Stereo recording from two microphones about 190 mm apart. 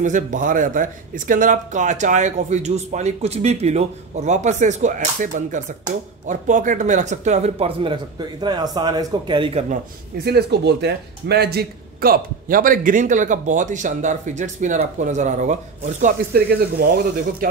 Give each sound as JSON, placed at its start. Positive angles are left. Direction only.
{"t": 0.0, "sound": "a man's voice", "side_deg": -40}
{"t": 10.2, "sound": "a man's voice", "side_deg": -60}